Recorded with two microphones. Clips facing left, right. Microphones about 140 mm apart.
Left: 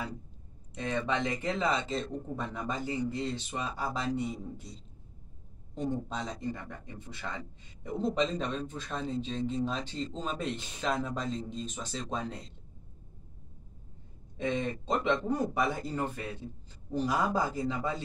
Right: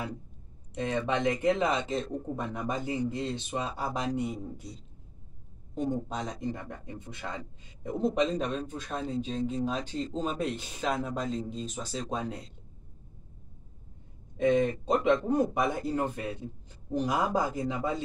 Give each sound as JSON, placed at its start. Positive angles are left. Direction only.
{"t": 0.8, "sound": "speech", "side_deg": -15}
{"t": 5.8, "sound": "speech", "side_deg": -10}
{"t": 14.4, "sound": "speech", "side_deg": -15}